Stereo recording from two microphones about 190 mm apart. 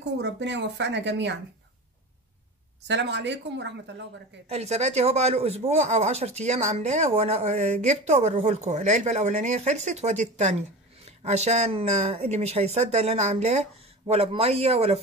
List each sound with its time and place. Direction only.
0.2 s speech: 70° right (ahead or behind)
2.9 s speech: 65° right (ahead or behind)
4.5 s speech: 35° right (ahead or behind)